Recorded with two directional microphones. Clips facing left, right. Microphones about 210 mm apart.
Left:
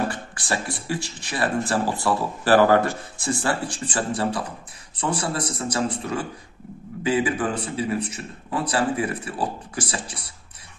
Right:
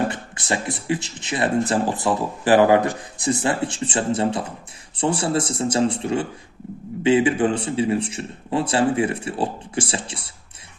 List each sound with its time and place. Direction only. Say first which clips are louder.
0.1 s speech: right 2 dB; 20° right (ahead or behind)
7.0 s speech: right 5 dB; 25° right (ahead or behind)